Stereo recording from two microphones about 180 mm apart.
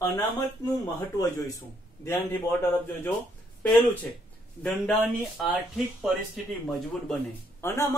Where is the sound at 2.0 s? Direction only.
15° left (ahead or behind).